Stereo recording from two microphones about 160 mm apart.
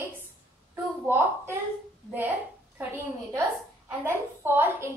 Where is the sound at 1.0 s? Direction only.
15° right (ahead or behind).